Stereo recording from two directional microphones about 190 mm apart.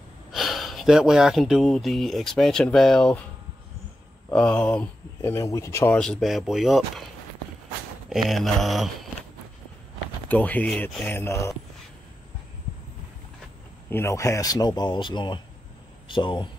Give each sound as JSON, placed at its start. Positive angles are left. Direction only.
{"t": 0.3, "sound": "speech", "side_deg": 0}
{"t": 4.3, "sound": "speech", "side_deg": 5}
{"t": 8.1, "sound": "speech", "side_deg": 0}
{"t": 10.2, "sound": "speech", "side_deg": 10}
{"t": 13.8, "sound": "speech", "side_deg": 15}